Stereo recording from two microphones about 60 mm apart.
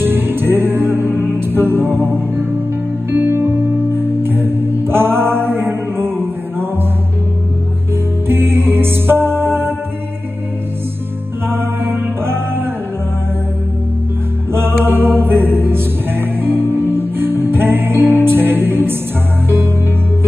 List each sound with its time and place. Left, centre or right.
0.0 s music: right
8.3 s music: right
11.4 s music: right
14.5 s music: right